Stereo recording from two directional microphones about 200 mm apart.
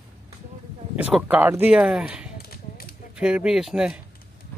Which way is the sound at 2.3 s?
50° left (ahead or behind).